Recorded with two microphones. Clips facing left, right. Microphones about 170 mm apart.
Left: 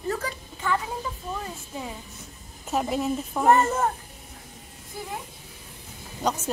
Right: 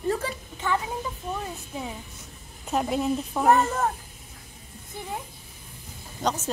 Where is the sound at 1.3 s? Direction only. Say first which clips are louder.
Right 1 dB; 10° right (ahead or behind).